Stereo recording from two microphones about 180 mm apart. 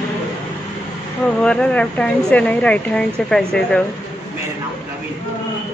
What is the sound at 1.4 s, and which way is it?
Speech, 5° left (ahead or behind).